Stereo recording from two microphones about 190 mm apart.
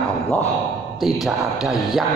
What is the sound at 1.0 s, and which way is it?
A man's voice, centre (ahead or behind).